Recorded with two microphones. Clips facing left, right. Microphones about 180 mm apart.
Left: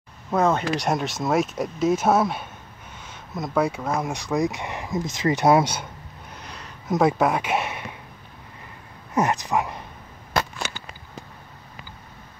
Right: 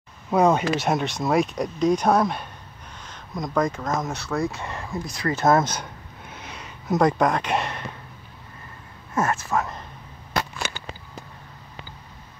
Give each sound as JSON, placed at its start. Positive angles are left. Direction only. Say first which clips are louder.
{"t": 0.3, "sound": "speech", "louder": "right 2 dB", "side_deg": -10}
{"t": 0.7, "sound": "speech", "louder": "right 1 dB", "side_deg": 0}
{"t": 6.3, "sound": "a sound", "louder": "right 1 dB", "side_deg": -5}
{"t": 7.0, "sound": "speech", "louder": "even", "side_deg": 5}
{"t": 9.1, "sound": "speech", "louder": "left 2 dB", "side_deg": 15}